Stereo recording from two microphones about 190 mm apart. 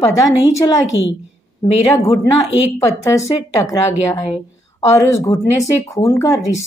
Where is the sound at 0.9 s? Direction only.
80° left.